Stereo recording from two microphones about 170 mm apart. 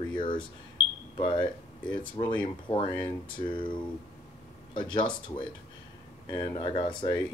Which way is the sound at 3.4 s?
30° left (ahead or behind).